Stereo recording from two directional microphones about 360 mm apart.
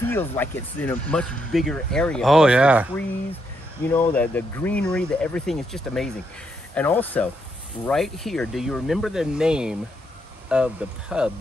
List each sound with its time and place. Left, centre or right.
0.1 s speech: centre
3.9 s speech: centre